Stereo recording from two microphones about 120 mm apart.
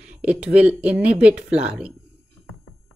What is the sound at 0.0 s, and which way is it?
Speech, 10° right (ahead or behind).